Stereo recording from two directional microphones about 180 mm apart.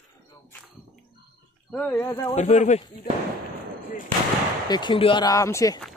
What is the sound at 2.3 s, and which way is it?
Speech, 40° left (ahead or behind).